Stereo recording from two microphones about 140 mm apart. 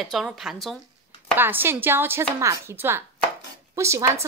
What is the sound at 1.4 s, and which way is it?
Speech, 15° right (ahead or behind).